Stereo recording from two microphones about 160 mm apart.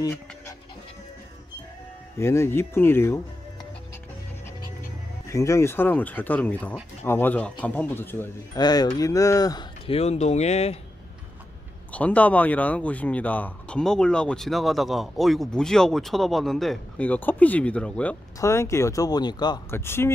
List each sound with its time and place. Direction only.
0.0 s speech: 20° left (ahead or behind)
2.1 s speech: 15° left (ahead or behind)
5.3 s speech: 20° left (ahead or behind)
8.5 s speech: 25° left (ahead or behind)
9.8 s speech: 40° left (ahead or behind)
11.9 s speech: 10° left (ahead or behind)
18.4 s speech: 15° left (ahead or behind)
19.7 s speech: 15° left (ahead or behind)